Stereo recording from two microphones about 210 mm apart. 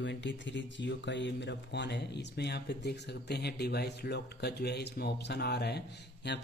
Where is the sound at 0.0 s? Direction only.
60° left (ahead or behind).